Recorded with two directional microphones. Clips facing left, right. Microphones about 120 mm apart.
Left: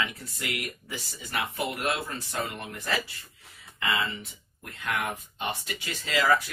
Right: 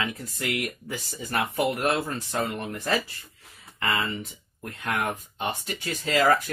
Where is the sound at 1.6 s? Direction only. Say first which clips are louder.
Right 5 dB; 35° right (ahead or behind).